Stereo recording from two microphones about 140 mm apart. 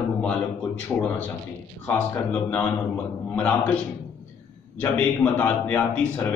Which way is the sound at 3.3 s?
10° left (ahead or behind).